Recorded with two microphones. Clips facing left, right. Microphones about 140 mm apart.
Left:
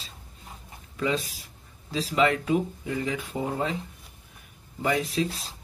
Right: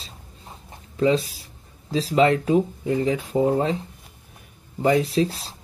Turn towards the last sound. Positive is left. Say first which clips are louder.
# right 6 dB
turn(degrees=-35)  # may be behind; listen again after turning